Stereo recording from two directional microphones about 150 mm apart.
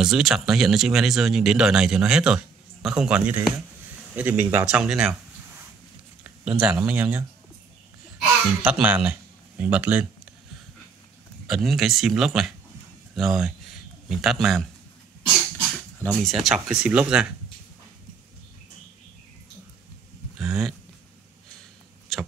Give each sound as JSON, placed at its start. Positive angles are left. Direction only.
{"t": 0.0, "sound": "speech", "side_deg": -5}
{"t": 6.4, "sound": "speech", "side_deg": -5}
{"t": 8.6, "sound": "speech", "side_deg": -10}
{"t": 11.4, "sound": "speech", "side_deg": 0}
{"t": 16.1, "sound": "speech", "side_deg": 0}
{"t": 20.3, "sound": "a sound", "side_deg": -5}
{"t": 22.1, "sound": "a sound", "side_deg": 0}